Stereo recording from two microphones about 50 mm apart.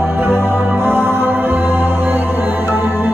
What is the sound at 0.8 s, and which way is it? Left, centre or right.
Music, right.